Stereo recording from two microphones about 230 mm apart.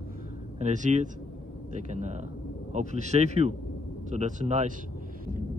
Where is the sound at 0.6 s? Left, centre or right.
Right.